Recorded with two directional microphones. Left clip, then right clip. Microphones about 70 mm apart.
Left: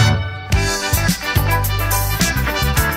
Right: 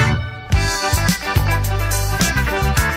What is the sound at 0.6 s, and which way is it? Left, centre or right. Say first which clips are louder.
Music: right 1 dB; right.